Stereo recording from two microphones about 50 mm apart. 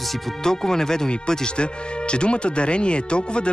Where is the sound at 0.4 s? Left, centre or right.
Centre.